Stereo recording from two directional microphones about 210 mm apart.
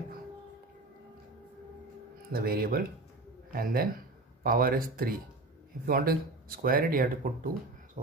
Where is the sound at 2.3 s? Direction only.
45° right (ahead or behind).